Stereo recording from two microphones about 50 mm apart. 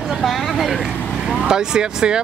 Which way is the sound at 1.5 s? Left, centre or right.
Centre.